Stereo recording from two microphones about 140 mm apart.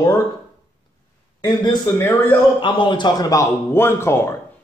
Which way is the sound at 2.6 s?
35° left (ahead or behind).